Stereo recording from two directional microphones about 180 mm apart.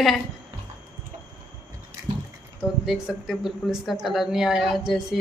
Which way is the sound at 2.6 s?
5° right (ahead or behind).